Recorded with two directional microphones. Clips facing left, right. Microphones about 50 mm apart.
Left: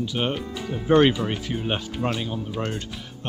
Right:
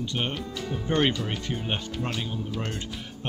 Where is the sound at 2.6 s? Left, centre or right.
Left.